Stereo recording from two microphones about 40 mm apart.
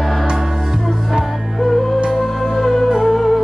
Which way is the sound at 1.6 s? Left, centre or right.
Centre.